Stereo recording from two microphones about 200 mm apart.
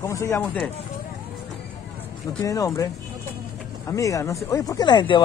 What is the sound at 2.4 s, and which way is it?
Speech, 15° left (ahead or behind).